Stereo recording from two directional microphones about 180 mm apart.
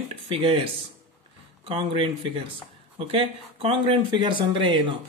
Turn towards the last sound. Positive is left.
turn(degrees=-25)  # may be behind; listen again after turning